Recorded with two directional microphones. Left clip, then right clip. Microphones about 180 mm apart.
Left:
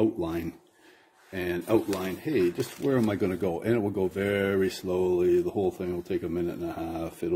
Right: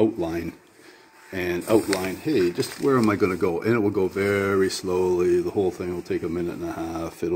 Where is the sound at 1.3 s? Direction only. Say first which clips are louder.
Right 5 dB; 10° left (ahead or behind).